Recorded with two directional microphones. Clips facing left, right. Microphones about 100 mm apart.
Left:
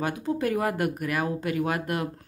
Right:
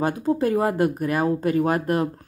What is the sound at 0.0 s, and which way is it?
Speech, 35° right (ahead or behind).